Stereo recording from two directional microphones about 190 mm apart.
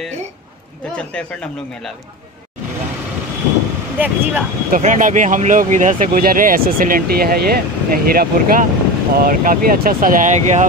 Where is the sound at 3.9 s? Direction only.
10° right (ahead or behind).